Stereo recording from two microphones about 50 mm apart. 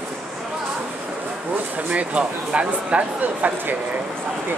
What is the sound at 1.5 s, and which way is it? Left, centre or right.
Speech, right.